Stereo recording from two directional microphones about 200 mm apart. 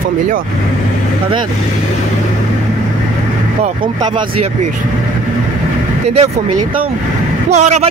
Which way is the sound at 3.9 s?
35° right (ahead or behind).